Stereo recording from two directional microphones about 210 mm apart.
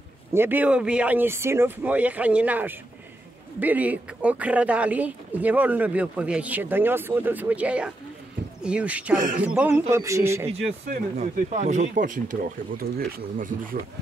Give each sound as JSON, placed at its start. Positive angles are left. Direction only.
{"t": 0.3, "sound": "speech", "side_deg": -10}
{"t": 10.9, "sound": "speech", "side_deg": -35}